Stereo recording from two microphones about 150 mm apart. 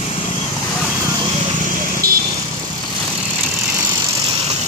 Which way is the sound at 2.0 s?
80° right.